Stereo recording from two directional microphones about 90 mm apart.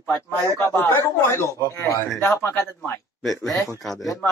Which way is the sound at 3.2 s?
Centre (ahead or behind).